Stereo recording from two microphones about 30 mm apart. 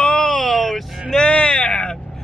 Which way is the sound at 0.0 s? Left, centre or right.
Left.